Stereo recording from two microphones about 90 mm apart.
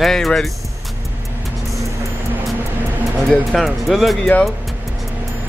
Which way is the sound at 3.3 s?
Centre (ahead or behind).